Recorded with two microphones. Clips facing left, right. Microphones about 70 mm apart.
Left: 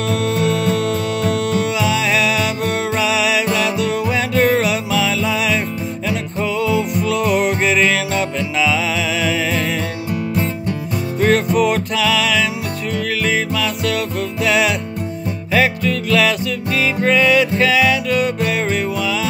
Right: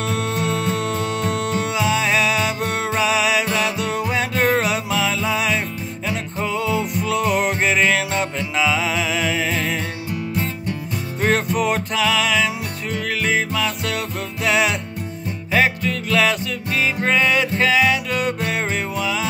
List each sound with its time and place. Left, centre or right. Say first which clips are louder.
0.0 s music: left 5 dB; right
11.1 s music: left 5 dB; right